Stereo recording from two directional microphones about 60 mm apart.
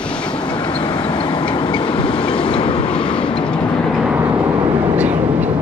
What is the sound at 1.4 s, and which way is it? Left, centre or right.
Train, centre.